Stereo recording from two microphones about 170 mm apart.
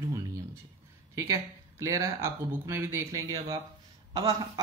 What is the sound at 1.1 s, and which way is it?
Speech, 15° right (ahead or behind).